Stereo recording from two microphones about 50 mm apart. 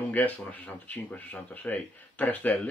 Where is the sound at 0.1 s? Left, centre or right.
Left.